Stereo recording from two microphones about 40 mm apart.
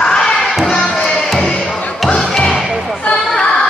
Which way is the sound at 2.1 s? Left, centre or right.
Centre.